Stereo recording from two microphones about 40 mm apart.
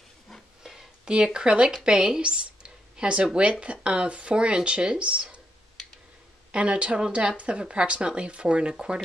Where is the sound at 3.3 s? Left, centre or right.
Right.